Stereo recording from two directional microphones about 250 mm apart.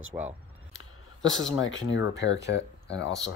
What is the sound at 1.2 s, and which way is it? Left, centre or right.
Speech, left.